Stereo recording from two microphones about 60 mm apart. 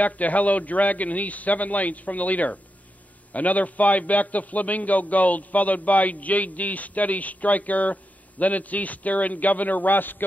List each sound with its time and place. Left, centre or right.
0.0 s a man's voice: left